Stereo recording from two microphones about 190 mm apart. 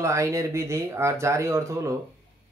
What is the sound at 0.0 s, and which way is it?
Speech, 15° right (ahead or behind).